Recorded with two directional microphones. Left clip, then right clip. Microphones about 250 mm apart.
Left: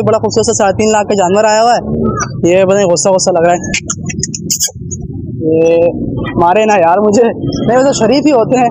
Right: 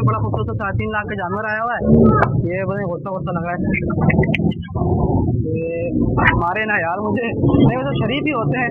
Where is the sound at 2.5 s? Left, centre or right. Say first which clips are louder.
Left 15 dB; left.